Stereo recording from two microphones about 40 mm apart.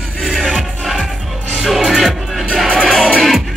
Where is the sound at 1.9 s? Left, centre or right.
Centre.